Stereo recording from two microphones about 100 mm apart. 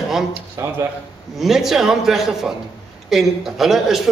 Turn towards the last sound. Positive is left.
turn(degrees=0)  # may be behind; listen again after turning